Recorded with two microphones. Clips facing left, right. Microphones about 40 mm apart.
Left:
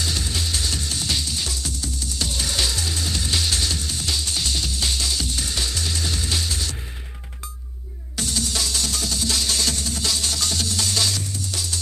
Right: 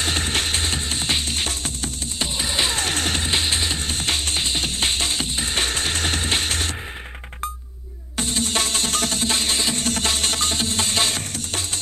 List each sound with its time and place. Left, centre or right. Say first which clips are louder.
0.0 s music: right 4 dB; right
2.2 s music: right 2 dB; right
2.8 s music: right 4 dB; right
3.3 s music: right 2 dB; right
8.2 s music: right 3 dB; right
9.8 s music: right 3 dB; right